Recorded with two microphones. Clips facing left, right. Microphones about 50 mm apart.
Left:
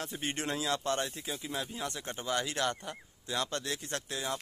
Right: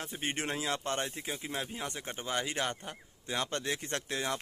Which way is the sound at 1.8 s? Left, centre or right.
Right.